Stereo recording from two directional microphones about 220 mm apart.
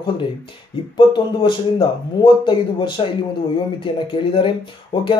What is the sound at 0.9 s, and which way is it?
Speech, 20° left (ahead or behind).